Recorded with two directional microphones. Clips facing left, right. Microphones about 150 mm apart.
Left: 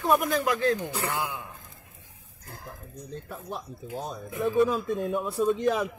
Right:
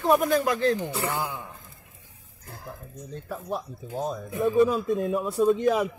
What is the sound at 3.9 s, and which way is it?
Speech, centre (ahead or behind).